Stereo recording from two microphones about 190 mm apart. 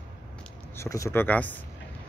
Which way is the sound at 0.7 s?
15° left (ahead or behind).